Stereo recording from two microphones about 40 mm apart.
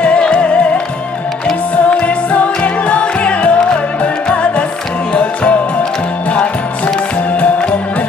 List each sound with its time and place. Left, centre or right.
0.0 s music: left
1.9 s music: left
5.1 s music: left